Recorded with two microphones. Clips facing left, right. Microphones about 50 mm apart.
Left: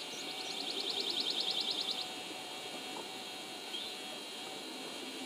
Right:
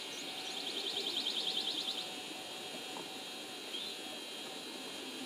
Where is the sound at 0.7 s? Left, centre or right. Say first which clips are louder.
Even; right.